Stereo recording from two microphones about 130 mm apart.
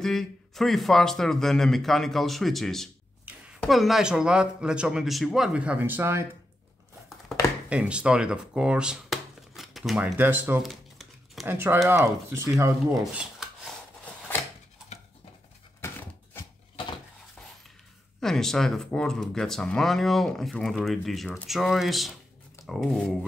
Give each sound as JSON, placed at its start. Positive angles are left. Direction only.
{"t": 0.0, "sound": "speech", "side_deg": 0}
{"t": 7.7, "sound": "speech", "side_deg": -10}
{"t": 9.6, "sound": "a sound", "side_deg": 0}
{"t": 10.1, "sound": "speech", "side_deg": -15}
{"t": 10.6, "sound": "crumpling", "side_deg": 0}
{"t": 11.4, "sound": "speech", "side_deg": -15}
{"t": 12.9, "sound": "speech", "side_deg": -5}
{"t": 18.2, "sound": "speech", "side_deg": 5}